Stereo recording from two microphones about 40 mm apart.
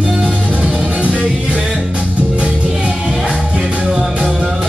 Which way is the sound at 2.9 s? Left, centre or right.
Centre.